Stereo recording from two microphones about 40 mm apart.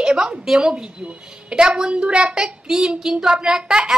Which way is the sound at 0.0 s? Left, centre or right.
Centre.